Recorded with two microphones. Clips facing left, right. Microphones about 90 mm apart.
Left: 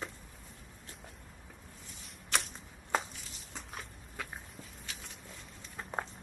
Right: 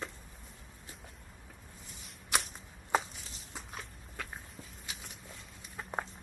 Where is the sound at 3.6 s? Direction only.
Centre (ahead or behind).